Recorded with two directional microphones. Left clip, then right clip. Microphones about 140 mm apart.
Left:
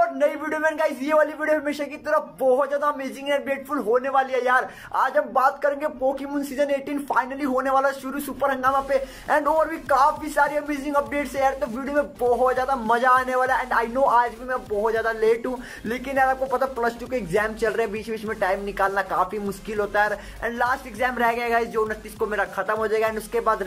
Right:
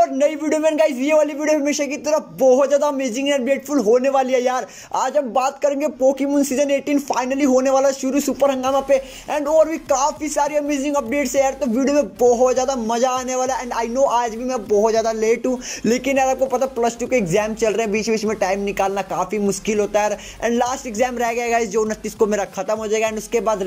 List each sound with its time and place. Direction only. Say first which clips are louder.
0.0 s speech: right 4 dB; 25° right (ahead or behind)